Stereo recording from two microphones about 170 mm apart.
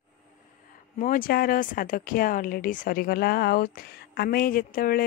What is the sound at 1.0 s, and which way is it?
Speech, 55° left (ahead or behind).